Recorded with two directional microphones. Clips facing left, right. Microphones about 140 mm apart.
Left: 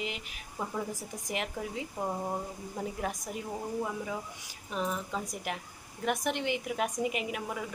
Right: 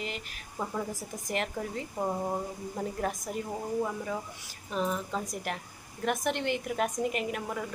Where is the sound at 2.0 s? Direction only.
5° right (ahead or behind).